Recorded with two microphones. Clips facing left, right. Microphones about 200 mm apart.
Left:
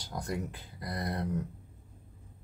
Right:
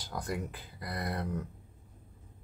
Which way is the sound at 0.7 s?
20° left (ahead or behind).